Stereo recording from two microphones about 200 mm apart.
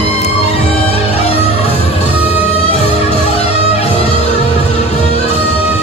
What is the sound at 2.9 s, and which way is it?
Music, 30° left (ahead or behind).